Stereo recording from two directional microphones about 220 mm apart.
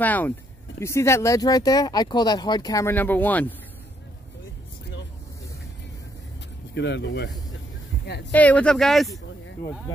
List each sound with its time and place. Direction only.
0.0 s speech: 5° left (ahead or behind)
6.7 s speech: 50° left (ahead or behind)
8.3 s speech: 5° left (ahead or behind)
9.1 s a sound: 15° left (ahead or behind)